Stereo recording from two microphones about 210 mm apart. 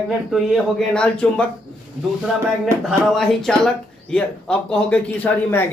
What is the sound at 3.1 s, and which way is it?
Speech, centre (ahead or behind).